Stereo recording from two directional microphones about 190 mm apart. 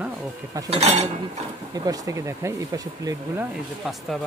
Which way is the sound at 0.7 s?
35° right (ahead or behind).